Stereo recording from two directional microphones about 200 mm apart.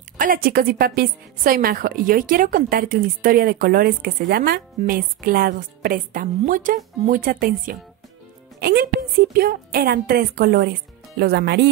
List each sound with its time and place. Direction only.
0.2 s a woman's voice: 45° right (ahead or behind)